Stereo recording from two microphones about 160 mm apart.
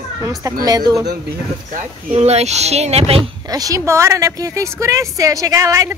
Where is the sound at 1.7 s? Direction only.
40° right (ahead or behind).